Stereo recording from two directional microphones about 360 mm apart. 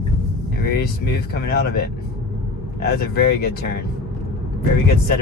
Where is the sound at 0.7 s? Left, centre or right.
Left.